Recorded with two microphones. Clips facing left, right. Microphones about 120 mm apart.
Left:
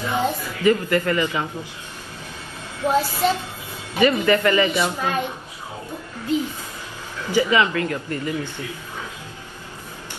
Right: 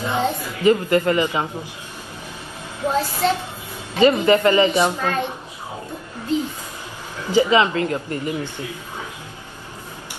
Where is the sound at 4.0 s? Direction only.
25° right (ahead or behind).